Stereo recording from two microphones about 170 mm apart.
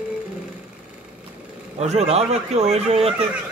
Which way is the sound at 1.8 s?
40° right (ahead or behind).